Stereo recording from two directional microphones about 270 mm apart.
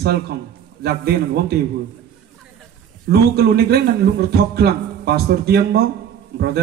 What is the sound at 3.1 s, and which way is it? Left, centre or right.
A man's voice, right.